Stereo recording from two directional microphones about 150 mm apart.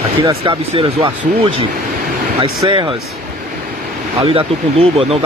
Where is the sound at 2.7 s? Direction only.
35° right (ahead or behind).